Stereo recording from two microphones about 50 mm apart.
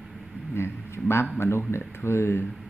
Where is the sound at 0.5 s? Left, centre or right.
Left.